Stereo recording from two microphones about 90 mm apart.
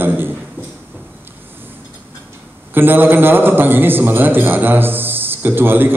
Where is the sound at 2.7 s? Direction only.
20° right (ahead or behind).